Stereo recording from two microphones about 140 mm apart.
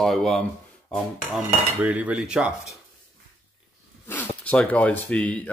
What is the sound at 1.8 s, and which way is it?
Cutlery, 10° right (ahead or behind).